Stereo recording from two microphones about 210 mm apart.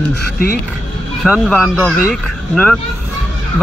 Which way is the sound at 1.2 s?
5° right (ahead or behind).